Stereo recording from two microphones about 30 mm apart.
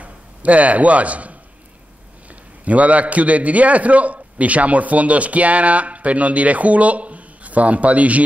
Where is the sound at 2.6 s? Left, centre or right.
Right.